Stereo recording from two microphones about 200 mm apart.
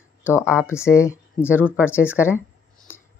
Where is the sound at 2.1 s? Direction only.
5° right (ahead or behind).